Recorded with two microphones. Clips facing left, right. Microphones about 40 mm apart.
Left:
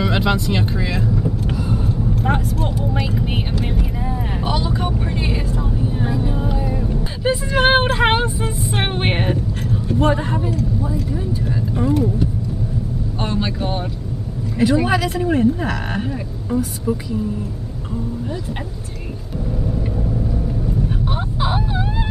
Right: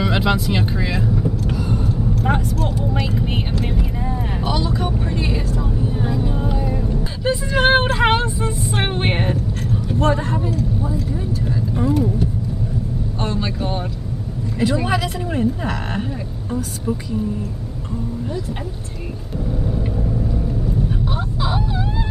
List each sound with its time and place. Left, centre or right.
0.0 s speech: centre
1.5 s vehicle: centre
4.5 s vehicle: centre
13.2 s vehicle: centre
14.6 s speech: centre
20.0 s vehicle: centre
21.0 s a sound: left